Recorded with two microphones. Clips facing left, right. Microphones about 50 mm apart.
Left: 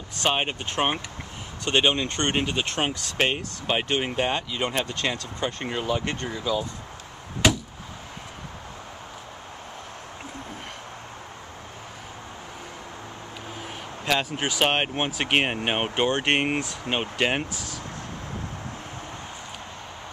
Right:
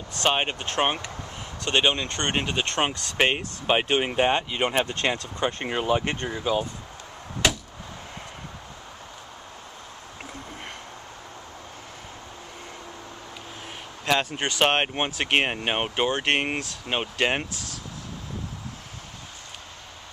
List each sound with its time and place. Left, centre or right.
0.2 s speech: centre
3.3 s speech: centre
14.3 s speech: centre